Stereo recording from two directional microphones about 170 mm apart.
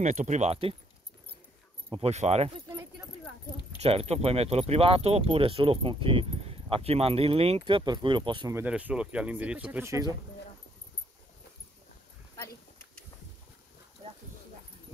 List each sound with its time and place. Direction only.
0.0 s speech: 45° right (ahead or behind)
1.9 s speech: 35° right (ahead or behind)
3.8 s speech: 35° right (ahead or behind)
8.5 s speech: 10° right (ahead or behind)